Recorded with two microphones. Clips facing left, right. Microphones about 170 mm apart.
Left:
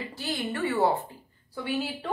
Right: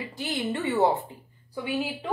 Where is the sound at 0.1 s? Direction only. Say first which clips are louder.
Right 4 dB; 20° right (ahead or behind).